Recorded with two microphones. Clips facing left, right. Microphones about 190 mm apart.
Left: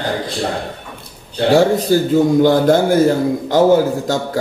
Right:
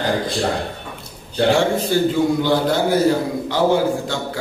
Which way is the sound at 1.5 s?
40° left (ahead or behind).